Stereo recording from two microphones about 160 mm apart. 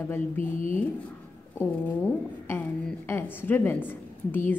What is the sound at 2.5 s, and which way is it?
A woman's voice, 15° left (ahead or behind).